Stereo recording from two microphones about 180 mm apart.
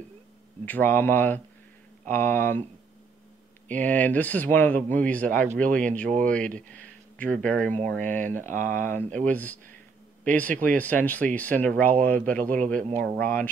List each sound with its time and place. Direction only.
0.7 s speech: 10° left (ahead or behind)
3.6 s speech: 10° left (ahead or behind)
8.0 s speech: 45° right (ahead or behind)
8.8 s speech: 10° left (ahead or behind)